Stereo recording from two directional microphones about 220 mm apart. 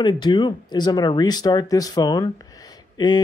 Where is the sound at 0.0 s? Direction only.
20° left (ahead or behind).